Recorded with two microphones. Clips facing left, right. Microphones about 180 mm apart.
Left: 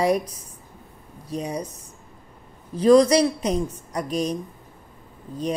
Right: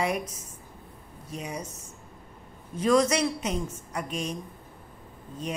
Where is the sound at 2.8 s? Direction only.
35° left (ahead or behind).